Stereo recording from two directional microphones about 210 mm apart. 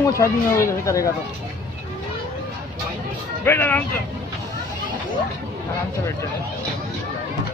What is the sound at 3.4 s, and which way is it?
Speech, 10° left (ahead or behind).